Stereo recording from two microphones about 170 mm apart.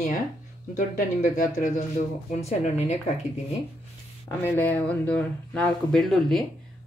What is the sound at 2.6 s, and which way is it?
Speech, 40° left (ahead or behind).